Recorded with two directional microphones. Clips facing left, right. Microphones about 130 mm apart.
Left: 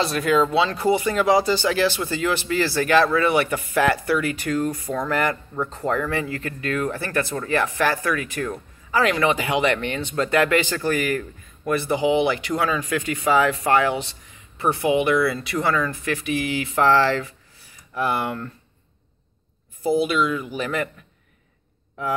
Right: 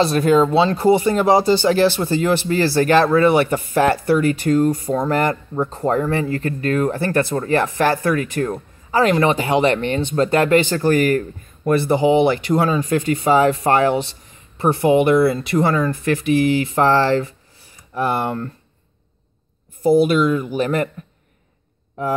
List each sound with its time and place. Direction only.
0.0 s speech: 35° right (ahead or behind)
19.8 s speech: 45° right (ahead or behind)